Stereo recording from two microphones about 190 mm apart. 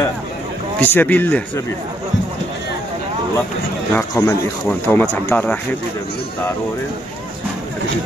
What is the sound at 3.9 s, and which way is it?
Speech, 15° left (ahead or behind).